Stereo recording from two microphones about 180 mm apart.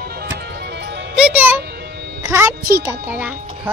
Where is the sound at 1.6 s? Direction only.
65° right (ahead or behind).